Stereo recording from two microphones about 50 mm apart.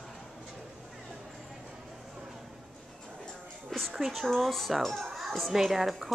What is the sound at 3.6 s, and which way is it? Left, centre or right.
Speech, centre.